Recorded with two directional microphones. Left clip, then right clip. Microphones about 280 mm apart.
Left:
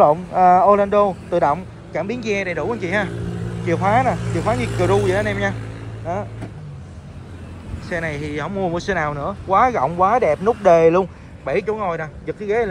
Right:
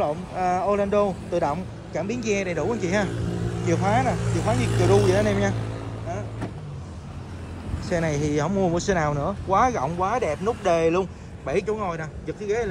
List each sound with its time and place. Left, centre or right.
0.0 s speech: centre
4.2 s speech: right
5.0 s speech: centre
7.9 s speech: centre